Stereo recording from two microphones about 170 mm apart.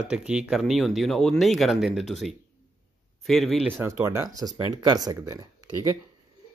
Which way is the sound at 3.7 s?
15° right (ahead or behind).